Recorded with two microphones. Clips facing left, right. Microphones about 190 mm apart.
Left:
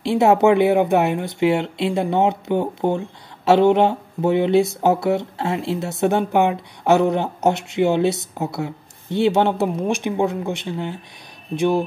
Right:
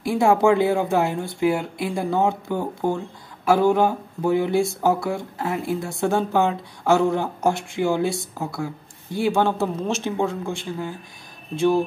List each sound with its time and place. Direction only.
0.0 s speech: 25° left (ahead or behind)